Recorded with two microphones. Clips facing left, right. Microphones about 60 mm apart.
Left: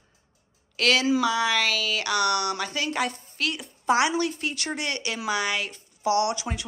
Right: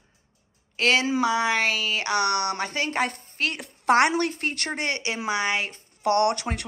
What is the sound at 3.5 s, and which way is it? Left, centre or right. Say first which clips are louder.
A woman's voice: right 3 dB; right.